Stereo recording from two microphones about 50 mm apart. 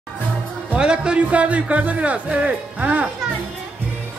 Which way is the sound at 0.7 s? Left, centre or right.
Centre.